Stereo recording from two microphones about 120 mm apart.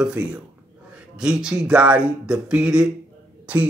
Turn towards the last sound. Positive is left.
turn(degrees=-10)  # may be behind; listen again after turning